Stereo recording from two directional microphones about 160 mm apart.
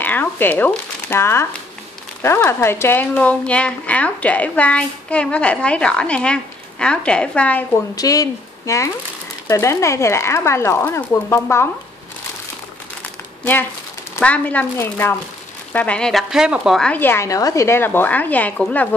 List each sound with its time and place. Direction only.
0.0 s speech: 10° left (ahead or behind)
7.9 s speech: 20° left (ahead or behind)
13.4 s speech: 10° left (ahead or behind)